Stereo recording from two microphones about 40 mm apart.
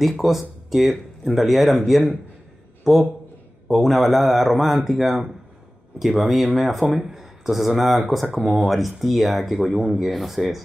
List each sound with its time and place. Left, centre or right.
0.2 s speech: centre
2.8 s a man's voice: centre